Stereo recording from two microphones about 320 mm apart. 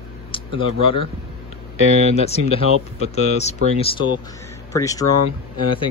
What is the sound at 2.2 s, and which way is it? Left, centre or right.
Speech, centre.